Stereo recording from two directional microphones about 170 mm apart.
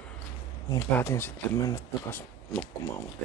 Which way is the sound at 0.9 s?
15° left (ahead or behind).